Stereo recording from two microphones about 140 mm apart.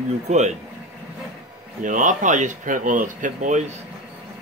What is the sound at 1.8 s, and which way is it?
Speech, 65° right (ahead or behind).